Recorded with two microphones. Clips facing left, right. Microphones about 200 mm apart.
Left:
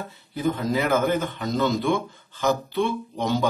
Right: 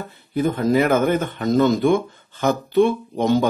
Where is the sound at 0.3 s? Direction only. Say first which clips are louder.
Right 6 dB; 55° right (ahead or behind).